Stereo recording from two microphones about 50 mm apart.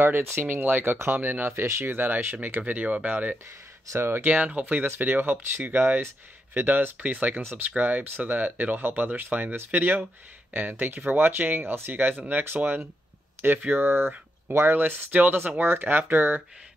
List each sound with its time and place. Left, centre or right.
0.0 s speech: right
0.6 s speech: right
2.6 s speech: right
4.9 s speech: right